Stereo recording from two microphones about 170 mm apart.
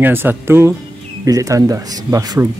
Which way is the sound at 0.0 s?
10° right (ahead or behind).